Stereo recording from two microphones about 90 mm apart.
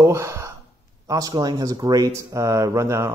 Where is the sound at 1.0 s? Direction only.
45° right (ahead or behind).